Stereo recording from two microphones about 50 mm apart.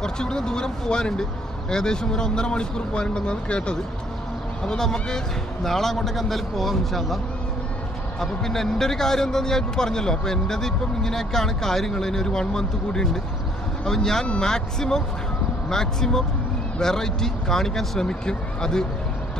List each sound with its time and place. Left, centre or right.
0.0 s speech: centre
8.2 s speech: centre